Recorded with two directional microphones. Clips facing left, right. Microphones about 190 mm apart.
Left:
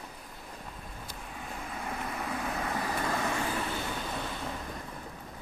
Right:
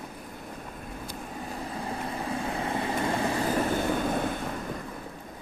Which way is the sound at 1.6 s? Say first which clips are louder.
Right 3 dB; 30° right (ahead or behind).